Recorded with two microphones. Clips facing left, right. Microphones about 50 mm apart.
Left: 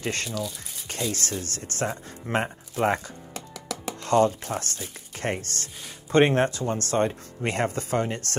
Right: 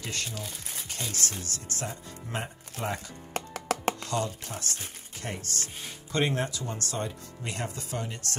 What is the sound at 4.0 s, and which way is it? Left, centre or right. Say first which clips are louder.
Speech: left 10 dB; left.